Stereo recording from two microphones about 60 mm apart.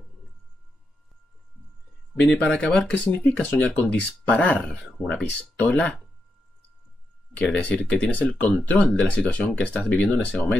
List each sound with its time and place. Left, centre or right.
2.5 s speech: centre
3.4 s speech: left
7.5 s speech: left